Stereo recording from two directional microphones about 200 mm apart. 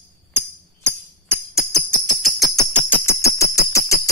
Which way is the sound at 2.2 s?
Centre (ahead or behind).